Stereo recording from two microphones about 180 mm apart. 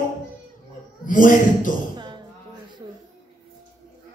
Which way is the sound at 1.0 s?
45° left (ahead or behind).